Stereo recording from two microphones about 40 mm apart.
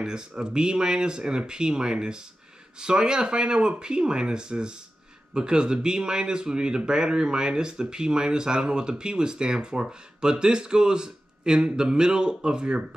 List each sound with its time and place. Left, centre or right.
0.0 s speech: centre